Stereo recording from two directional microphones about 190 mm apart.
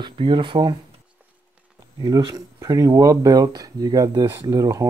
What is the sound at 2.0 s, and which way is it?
Speech, 20° right (ahead or behind).